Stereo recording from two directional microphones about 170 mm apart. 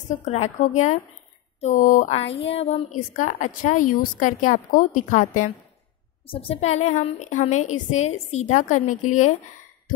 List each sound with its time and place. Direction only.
0.2 s a woman's voice: 40° left (ahead or behind)
2.2 s a sound: 90° left
2.5 s a woman's voice: 40° left (ahead or behind)
6.2 s a woman's voice: 35° left (ahead or behind)